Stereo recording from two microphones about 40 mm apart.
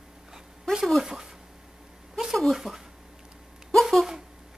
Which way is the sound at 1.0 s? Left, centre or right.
Centre.